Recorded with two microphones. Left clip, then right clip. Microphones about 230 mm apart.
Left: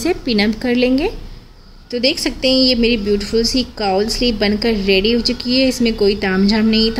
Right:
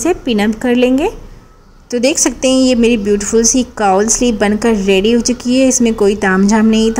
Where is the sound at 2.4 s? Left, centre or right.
Right.